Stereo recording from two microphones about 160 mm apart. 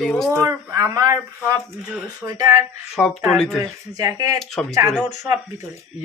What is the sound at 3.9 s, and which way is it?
Speech, 20° right (ahead or behind).